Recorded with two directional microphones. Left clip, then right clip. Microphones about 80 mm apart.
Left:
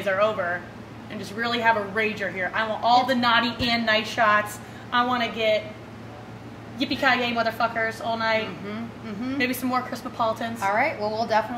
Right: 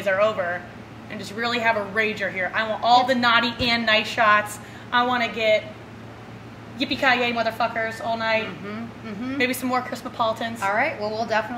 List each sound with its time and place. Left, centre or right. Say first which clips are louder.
0.0 s a woman's voice: right 2 dB; centre
6.8 s a woman's voice: right 2 dB; centre
10.6 s a woman's voice: even; centre